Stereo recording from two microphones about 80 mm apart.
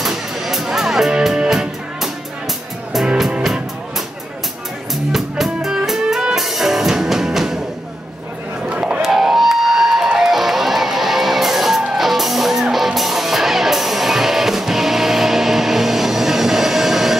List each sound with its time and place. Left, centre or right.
0.0 s music: centre
5.1 s music: centre
8.6 s a sound: centre
9.0 s music: centre